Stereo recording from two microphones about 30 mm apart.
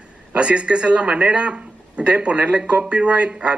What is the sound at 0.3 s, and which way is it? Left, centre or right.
Speech, right.